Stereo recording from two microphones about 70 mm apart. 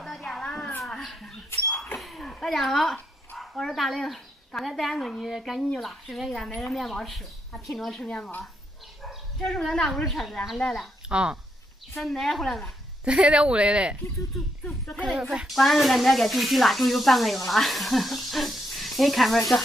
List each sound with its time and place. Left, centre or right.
0.0 s a sound: centre
0.8 s cat: centre
2.0 s a sound: centre
3.3 s speech: centre
9.4 s speech: centre
11.1 s speech: centre
12.0 s speech: centre
13.0 s speech: centre
15.0 s speech: centre